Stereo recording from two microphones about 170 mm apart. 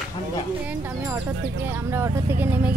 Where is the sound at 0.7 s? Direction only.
15° right (ahead or behind).